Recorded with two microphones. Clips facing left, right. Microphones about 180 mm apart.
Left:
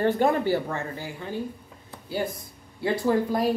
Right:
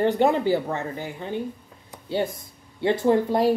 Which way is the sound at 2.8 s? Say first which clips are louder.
Right 3 dB; 25° right (ahead or behind).